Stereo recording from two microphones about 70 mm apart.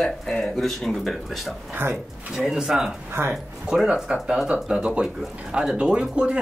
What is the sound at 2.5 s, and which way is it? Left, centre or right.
Speech, centre.